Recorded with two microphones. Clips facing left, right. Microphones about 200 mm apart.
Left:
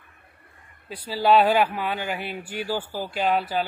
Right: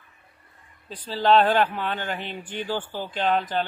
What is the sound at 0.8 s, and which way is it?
A man's voice, 10° left (ahead or behind).